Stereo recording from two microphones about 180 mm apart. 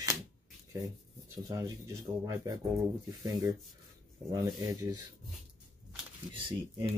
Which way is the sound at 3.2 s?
20° right (ahead or behind).